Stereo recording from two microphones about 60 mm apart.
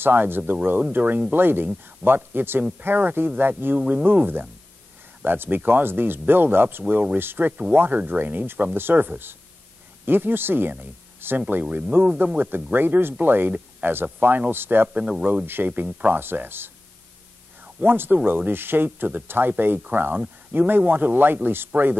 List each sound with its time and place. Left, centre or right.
0.0 s speech: right
6.9 s speech: right
15.0 s speech: centre
15.4 s speech: right
17.7 s speech: right